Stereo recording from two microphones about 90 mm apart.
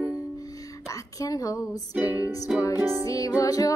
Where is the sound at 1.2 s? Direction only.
40° left (ahead or behind).